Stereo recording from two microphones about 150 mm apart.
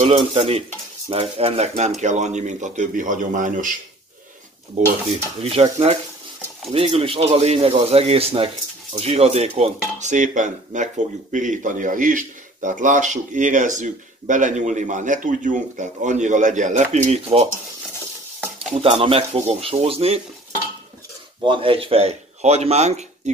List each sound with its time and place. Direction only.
0.0 s stir: 45° right (ahead or behind)
5.1 s stir: 45° right (ahead or behind)
6.7 s speech: 40° right (ahead or behind)
8.9 s stir: 45° right (ahead or behind)
9.6 s speech: 55° right (ahead or behind)
18.7 s speech: 40° right (ahead or behind)
21.5 s a man's voice: 35° right (ahead or behind)